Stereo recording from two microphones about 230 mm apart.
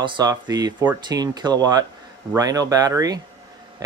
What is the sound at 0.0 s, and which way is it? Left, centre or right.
Speech, centre.